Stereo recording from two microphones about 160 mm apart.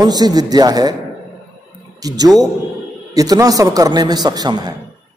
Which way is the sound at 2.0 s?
25° right (ahead or behind).